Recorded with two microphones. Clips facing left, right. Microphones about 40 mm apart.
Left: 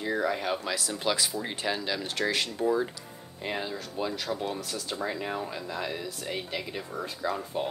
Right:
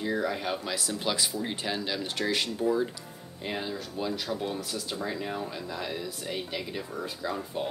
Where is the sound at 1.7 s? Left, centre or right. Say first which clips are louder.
Left 4 dB; left.